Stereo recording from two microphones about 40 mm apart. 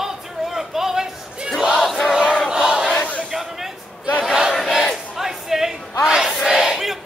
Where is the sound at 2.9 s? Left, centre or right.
Left.